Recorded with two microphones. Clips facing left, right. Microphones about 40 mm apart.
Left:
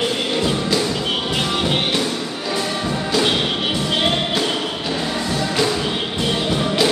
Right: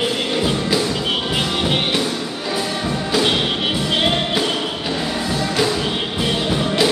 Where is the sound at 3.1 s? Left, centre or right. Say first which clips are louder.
Right 1 dB; centre.